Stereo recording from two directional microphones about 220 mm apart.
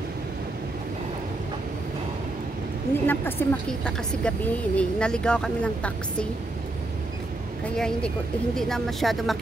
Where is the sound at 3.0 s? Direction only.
10° left (ahead or behind).